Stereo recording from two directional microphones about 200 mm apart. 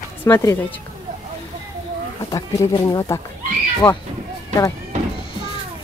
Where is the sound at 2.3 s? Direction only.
15° left (ahead or behind).